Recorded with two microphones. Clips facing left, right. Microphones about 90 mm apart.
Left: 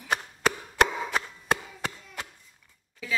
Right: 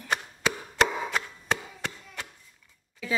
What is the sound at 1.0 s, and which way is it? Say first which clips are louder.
Wood: left 2 dB; 5° left (ahead or behind).